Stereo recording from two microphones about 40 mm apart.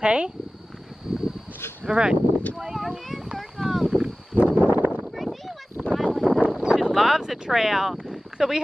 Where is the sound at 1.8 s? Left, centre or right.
Right.